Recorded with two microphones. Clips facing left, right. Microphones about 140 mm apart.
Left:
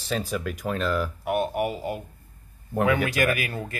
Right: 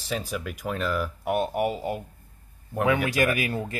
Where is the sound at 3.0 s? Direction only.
25° right (ahead or behind).